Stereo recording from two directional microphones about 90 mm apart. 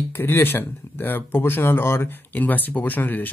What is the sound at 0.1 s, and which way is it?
Speech, 25° left (ahead or behind).